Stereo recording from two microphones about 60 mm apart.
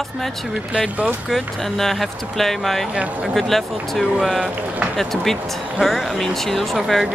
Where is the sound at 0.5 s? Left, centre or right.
Right.